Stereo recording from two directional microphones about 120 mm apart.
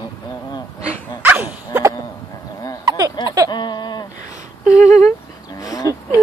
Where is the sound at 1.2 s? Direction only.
15° right (ahead or behind).